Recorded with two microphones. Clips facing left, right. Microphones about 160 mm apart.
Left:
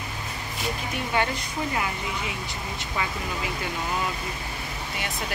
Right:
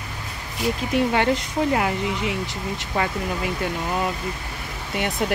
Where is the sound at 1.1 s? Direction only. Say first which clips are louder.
Right 6 dB; 75° right (ahead or behind).